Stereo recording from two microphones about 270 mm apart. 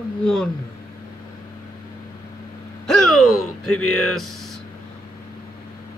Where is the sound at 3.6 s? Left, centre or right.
Left.